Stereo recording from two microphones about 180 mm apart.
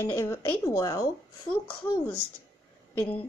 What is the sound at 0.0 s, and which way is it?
A woman's voice, 15° left (ahead or behind).